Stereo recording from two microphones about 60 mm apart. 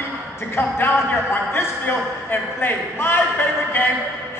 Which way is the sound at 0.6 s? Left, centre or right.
Left.